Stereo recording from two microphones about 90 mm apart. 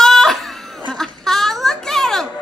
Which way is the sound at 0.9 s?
5° left (ahead or behind).